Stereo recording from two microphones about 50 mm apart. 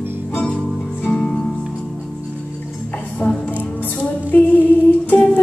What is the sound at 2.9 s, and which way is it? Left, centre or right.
Music, left.